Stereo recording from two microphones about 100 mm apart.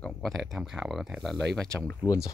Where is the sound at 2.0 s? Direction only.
40° left (ahead or behind).